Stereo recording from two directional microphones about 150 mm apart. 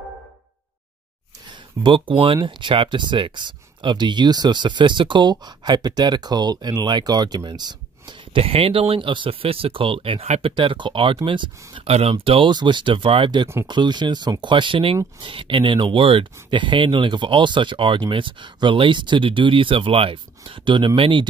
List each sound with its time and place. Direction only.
1.5 s speech: 35° right (ahead or behind)